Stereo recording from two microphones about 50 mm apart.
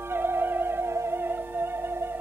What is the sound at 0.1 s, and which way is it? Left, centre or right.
Theremin, right.